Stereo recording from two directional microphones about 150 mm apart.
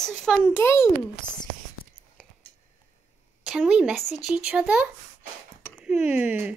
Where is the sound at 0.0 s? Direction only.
5° left (ahead or behind).